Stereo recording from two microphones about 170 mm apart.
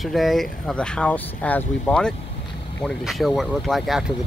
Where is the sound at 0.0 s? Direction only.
Centre (ahead or behind).